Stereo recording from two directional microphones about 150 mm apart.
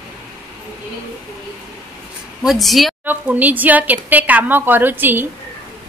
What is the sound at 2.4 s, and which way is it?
Speech, centre (ahead or behind).